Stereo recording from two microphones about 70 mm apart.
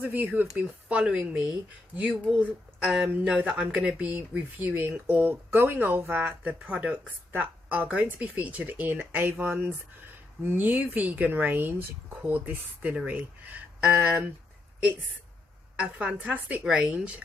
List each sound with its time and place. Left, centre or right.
0.0 s speech: right
0.8 s speech: centre
15.7 s speech: centre